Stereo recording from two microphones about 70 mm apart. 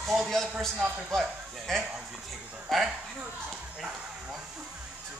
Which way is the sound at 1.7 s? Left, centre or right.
Centre.